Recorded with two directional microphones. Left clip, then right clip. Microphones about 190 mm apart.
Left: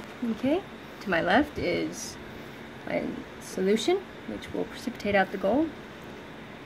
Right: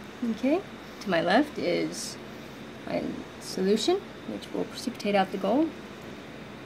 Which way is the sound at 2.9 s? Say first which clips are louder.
Left 1 dB; 5° left (ahead or behind).